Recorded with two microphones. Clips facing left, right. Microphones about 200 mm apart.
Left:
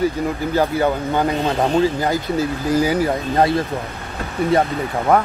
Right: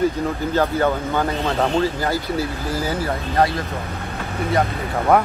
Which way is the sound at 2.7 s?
15° left (ahead or behind).